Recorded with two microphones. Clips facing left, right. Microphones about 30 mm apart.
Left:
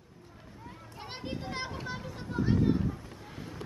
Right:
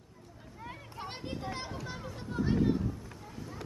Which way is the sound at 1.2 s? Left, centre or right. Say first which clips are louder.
Left 4 dB; centre.